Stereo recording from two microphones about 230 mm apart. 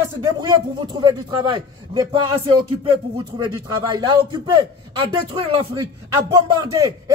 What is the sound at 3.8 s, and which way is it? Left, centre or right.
Speech, centre.